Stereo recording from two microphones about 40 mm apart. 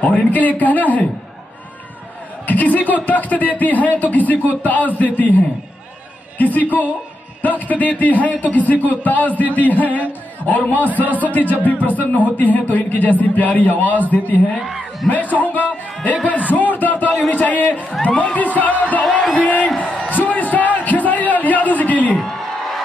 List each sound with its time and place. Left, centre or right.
0.0 s speech: left
2.4 s speech: left
6.3 s speech: left
11.0 s speech: right
11.2 s speech: left
14.6 s speech: centre
15.0 s speech: left
19.3 s whoop: left
20.1 s a sound: left